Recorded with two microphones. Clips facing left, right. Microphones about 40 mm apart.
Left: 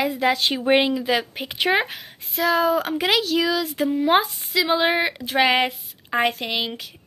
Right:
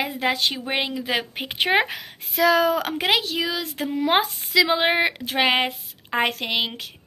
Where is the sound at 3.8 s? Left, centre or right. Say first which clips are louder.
Left 2 dB; right.